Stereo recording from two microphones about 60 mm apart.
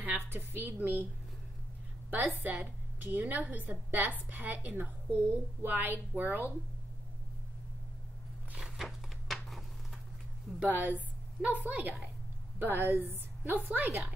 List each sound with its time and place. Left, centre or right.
0.0 s a woman's voice: right
2.0 s a woman's voice: right
8.7 s a sound: centre
10.6 s a woman's voice: right